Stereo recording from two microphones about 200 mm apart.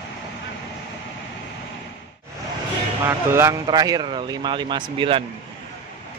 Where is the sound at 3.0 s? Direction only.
15° right (ahead or behind).